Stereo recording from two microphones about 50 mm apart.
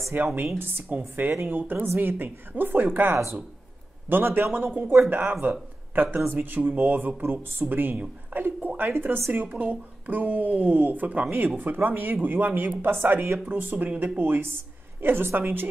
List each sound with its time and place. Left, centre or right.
0.1 s speech: right
8.3 s a sound: right
8.9 s speech: right